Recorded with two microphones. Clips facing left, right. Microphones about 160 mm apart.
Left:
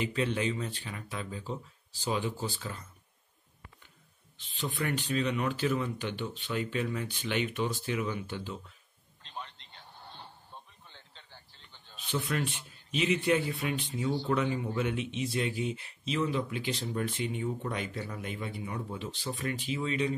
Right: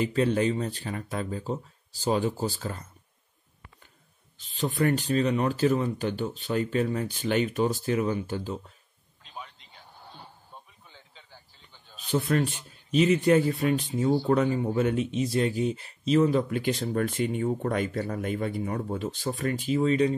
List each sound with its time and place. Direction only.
0.0 s speech: 40° right (ahead or behind)
4.4 s speech: 40° right (ahead or behind)
9.2 s a sound: 5° right (ahead or behind)
12.0 s speech: 40° right (ahead or behind)